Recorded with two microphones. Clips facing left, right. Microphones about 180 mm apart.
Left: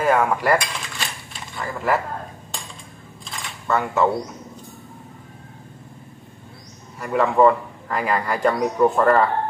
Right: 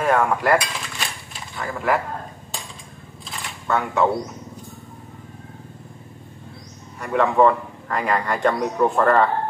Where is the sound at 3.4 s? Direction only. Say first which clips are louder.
Left 1 dB; centre (ahead or behind).